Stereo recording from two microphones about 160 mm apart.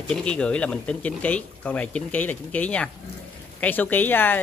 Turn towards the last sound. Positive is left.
turn(degrees=10)  # may be behind; listen again after turning